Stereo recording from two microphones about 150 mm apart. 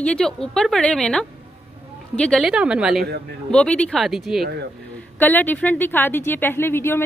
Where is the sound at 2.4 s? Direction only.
5° right (ahead or behind).